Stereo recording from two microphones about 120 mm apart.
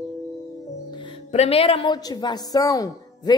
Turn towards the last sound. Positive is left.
turn(degrees=30)  # may be behind; listen again after turning